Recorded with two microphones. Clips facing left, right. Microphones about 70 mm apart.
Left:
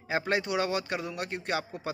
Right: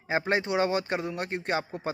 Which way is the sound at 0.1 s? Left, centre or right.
Right.